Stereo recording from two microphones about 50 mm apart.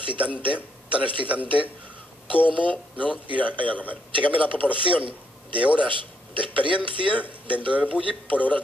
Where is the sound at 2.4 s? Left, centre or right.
Left.